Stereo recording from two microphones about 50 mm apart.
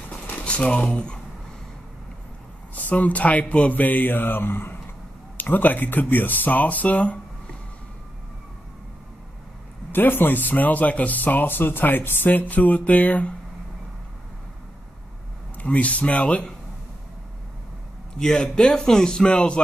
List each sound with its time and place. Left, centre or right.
0.3 s speech: left
2.7 s speech: left
9.9 s speech: left
12.3 s speech: left
15.5 s speech: left
18.2 s a man's voice: centre